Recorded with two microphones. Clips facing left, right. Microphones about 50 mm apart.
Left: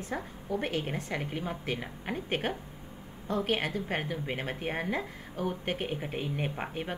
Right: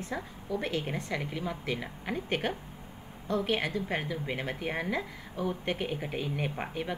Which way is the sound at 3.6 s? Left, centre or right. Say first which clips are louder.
Even; left.